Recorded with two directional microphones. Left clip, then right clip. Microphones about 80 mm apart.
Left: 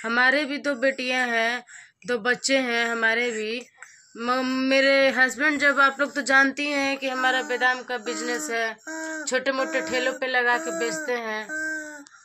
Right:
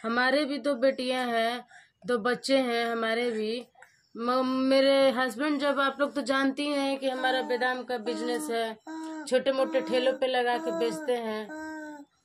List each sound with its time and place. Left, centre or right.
0.0 s speech: right
8.8 s speech: right
9.2 s speech: centre
11.5 s babbling: right